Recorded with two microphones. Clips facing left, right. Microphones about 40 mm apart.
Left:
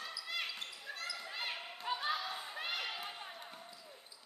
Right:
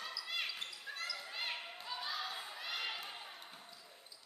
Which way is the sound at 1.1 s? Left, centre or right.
Centre.